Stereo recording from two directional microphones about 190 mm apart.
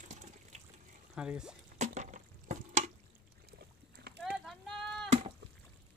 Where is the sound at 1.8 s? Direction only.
40° right (ahead or behind).